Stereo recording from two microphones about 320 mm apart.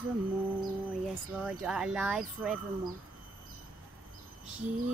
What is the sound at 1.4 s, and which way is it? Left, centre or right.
Speech, centre.